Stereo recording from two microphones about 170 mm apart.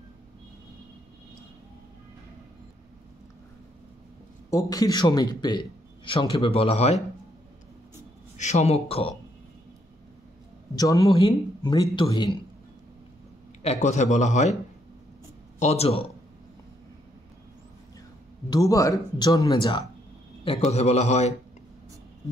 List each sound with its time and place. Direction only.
4.5 s a man's voice: 20° left (ahead or behind); by 7.0 s 35° left (ahead or behind)
8.4 s a man's voice: 40° left (ahead or behind)
10.8 s a man's voice: 20° left (ahead or behind)
13.6 s a man's voice: 40° left (ahead or behind)
15.6 s a man's voice: 40° left (ahead or behind)
18.5 s a man's voice: 20° left (ahead or behind)
20.4 s a man's voice: 35° left (ahead or behind)